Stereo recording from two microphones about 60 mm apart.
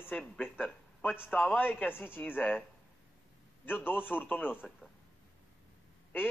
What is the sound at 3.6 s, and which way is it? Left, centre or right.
Speech, left.